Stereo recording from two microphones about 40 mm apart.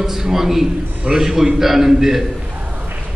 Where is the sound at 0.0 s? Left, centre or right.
Centre.